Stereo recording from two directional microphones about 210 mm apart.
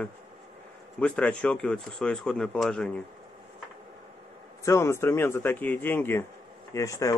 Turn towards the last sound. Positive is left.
turn(degrees=15)  # may be behind; listen again after turning